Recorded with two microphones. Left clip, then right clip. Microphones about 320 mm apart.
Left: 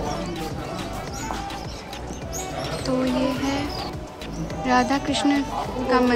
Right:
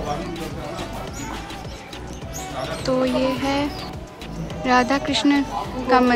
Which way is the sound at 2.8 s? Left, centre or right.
Centre.